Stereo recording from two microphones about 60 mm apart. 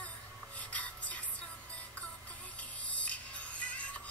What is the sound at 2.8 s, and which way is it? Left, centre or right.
Music, left.